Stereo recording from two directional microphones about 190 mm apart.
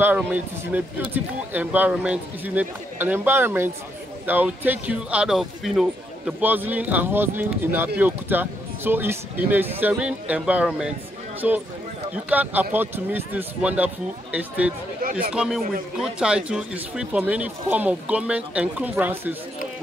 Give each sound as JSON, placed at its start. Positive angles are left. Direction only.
{"t": 0.0, "sound": "a man's voice", "side_deg": -10}
{"t": 15.0, "sound": "speech", "side_deg": -50}
{"t": 15.3, "sound": "a man's voice", "side_deg": -5}